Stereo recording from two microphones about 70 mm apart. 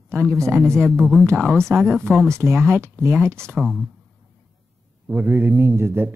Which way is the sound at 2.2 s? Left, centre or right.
Right.